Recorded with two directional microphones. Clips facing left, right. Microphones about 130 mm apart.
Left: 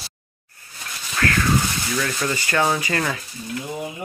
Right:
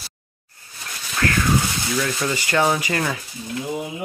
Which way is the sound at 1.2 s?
25° right (ahead or behind).